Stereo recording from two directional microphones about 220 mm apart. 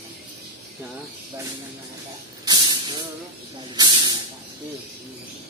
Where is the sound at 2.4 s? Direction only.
20° right (ahead or behind).